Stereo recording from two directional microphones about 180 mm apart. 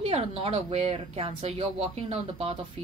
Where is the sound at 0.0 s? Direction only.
35° right (ahead or behind).